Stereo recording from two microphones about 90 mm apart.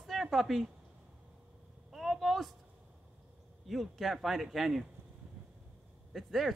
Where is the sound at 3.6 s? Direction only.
Centre (ahead or behind).